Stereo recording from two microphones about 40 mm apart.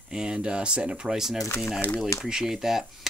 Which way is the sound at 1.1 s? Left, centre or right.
Centre.